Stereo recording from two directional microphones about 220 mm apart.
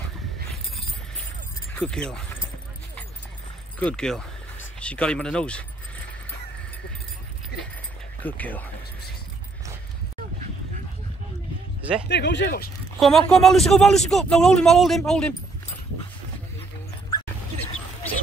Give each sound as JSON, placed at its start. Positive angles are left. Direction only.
{"t": 1.7, "sound": "speech", "side_deg": 5}
{"t": 3.8, "sound": "speech", "side_deg": 5}
{"t": 8.2, "sound": "speech", "side_deg": 5}
{"t": 12.1, "sound": "speech", "side_deg": 55}
{"t": 13.0, "sound": "speech", "side_deg": 0}